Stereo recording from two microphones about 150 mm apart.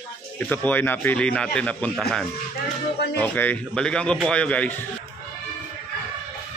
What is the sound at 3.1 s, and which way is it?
Speech, 10° left (ahead or behind).